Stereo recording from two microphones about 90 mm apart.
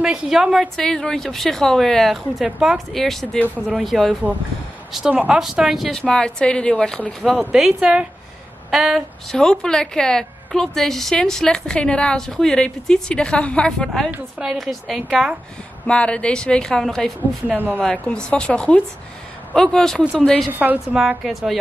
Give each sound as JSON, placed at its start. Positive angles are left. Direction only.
{"t": 0.0, "sound": "a woman's voice", "side_deg": -10}
{"t": 2.9, "sound": "a woman's voice", "side_deg": 5}
{"t": 15.9, "sound": "a woman's voice", "side_deg": 10}
{"t": 17.5, "sound": "speech", "side_deg": -20}
{"t": 17.7, "sound": "a woman's voice", "side_deg": 10}
{"t": 20.5, "sound": "speech", "side_deg": -20}
{"t": 21.2, "sound": "a woman's voice", "side_deg": 0}